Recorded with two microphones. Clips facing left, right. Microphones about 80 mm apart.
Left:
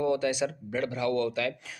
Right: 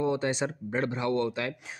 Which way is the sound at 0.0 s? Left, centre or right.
Right.